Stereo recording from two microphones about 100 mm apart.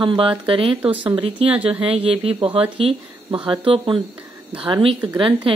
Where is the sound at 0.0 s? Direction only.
55° right (ahead or behind).